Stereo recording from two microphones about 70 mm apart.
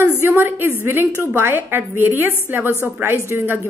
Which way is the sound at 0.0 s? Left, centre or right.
Right.